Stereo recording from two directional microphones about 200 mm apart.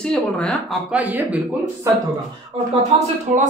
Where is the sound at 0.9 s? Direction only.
5° right (ahead or behind).